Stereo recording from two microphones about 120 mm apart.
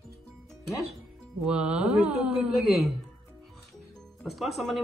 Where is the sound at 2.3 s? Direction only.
Centre (ahead or behind).